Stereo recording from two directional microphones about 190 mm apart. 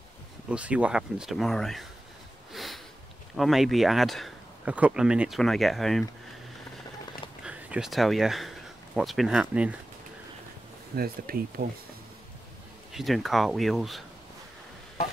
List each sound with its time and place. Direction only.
0.5 s speech: 5° right (ahead or behind)
2.5 s a sound: centre (ahead or behind)
3.3 s speech: centre (ahead or behind)
7.4 s speech: 5° right (ahead or behind)
11.0 s speech: 50° right (ahead or behind)
12.9 s speech: centre (ahead or behind)